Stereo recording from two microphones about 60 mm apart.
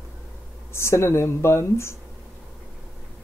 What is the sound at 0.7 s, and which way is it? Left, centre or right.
Speech, left.